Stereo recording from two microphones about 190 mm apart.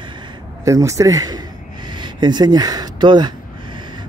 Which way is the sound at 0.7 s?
15° right (ahead or behind).